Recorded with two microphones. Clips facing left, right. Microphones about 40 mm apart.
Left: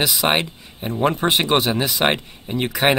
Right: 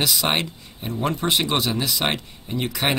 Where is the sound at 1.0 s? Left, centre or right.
Left.